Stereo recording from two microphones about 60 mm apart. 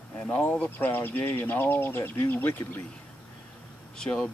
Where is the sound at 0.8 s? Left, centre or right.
Left.